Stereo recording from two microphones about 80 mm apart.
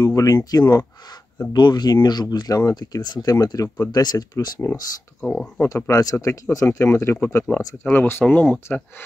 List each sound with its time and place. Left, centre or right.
0.0 s speech: left
1.5 s speech: left
5.2 s speech: centre
5.6 s speech: left